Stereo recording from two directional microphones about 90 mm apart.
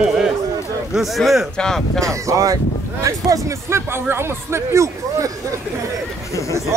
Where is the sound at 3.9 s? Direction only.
25° right (ahead or behind).